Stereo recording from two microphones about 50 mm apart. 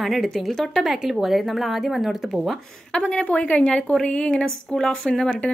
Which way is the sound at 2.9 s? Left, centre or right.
Left.